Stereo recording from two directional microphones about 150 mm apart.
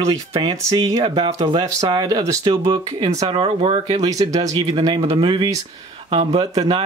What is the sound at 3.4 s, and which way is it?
Speech, 40° right (ahead or behind).